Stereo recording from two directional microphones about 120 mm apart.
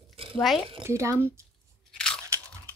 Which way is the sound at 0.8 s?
25° right (ahead or behind).